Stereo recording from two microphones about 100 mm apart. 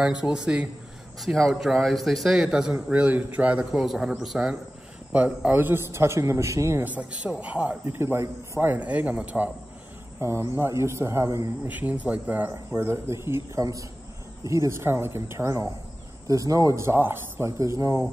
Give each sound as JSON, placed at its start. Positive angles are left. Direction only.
{"t": 0.0, "sound": "a man's voice", "side_deg": -5}
{"t": 6.9, "sound": "a man's voice", "side_deg": -10}
{"t": 10.2, "sound": "a man's voice", "side_deg": -25}
{"t": 11.6, "sound": "a man's voice", "side_deg": -15}